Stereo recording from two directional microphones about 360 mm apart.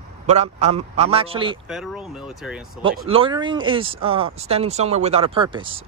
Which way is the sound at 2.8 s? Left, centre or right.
Right.